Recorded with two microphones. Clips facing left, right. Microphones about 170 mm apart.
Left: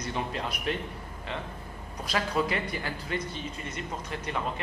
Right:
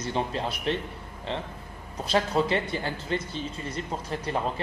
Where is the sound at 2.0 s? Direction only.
25° right (ahead or behind).